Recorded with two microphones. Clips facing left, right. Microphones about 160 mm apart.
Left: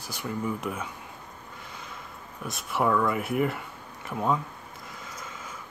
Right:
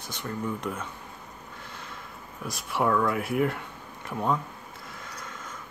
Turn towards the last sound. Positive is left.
turn(degrees=0)  # may be behind; listen again after turning